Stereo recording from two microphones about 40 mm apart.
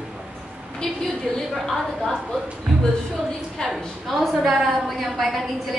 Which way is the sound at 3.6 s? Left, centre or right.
Centre.